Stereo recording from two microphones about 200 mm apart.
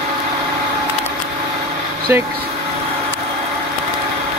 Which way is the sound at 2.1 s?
10° right (ahead or behind).